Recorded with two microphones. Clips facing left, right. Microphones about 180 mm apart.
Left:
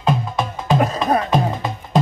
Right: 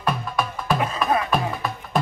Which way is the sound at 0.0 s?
20° left (ahead or behind).